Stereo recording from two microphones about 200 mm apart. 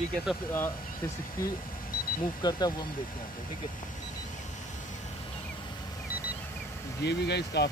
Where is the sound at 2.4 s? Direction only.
20° left (ahead or behind).